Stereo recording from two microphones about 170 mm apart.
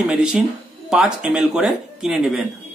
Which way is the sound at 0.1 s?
5° right (ahead or behind).